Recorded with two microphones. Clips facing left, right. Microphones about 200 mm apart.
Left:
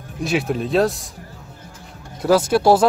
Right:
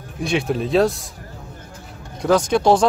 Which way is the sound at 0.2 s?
Centre (ahead or behind).